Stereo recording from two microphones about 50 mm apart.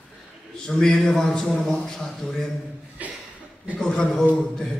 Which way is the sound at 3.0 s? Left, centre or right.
Right.